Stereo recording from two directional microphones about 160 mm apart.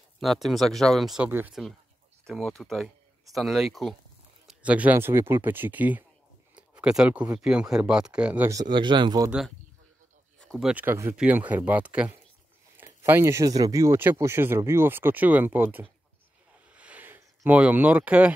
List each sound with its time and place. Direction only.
0.2 s speech: centre (ahead or behind)
2.2 s speech: centre (ahead or behind)
8.5 s speech: 25° right (ahead or behind)
10.5 s speech: 5° right (ahead or behind)
16.5 s a sound: 10° right (ahead or behind)